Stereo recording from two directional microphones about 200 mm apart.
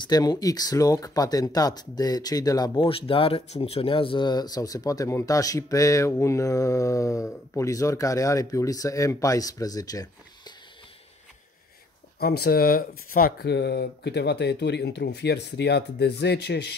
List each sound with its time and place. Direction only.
0.0 s speech: 20° left (ahead or behind)
12.2 s speech: 50° left (ahead or behind)